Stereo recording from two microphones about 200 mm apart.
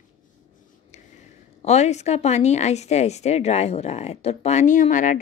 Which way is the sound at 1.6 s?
35° left (ahead or behind).